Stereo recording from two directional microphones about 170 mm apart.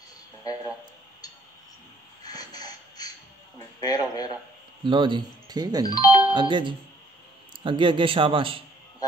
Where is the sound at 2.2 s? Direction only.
20° left (ahead or behind).